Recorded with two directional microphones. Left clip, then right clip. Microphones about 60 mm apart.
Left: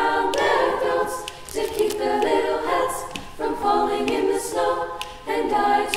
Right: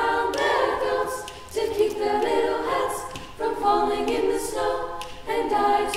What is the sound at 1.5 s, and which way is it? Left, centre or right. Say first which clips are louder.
A capella: even; centre.